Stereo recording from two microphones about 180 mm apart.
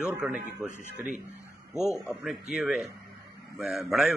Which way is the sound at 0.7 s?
40° right (ahead or behind).